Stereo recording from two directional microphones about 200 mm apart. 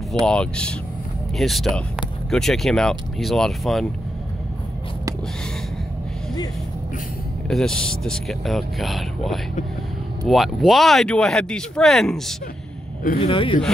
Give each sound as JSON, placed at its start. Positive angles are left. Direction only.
{"t": 0.3, "sound": "speech", "side_deg": 5}
{"t": 7.4, "sound": "speech", "side_deg": 5}
{"t": 13.2, "sound": "speech", "side_deg": 25}